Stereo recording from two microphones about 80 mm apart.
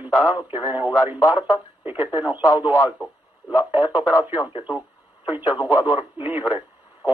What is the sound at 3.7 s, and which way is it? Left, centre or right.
Speech, right.